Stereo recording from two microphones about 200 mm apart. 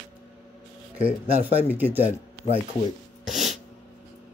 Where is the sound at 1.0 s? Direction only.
10° right (ahead or behind).